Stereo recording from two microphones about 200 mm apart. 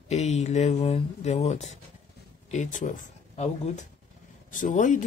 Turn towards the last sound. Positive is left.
turn(degrees=40)  # may be behind; listen again after turning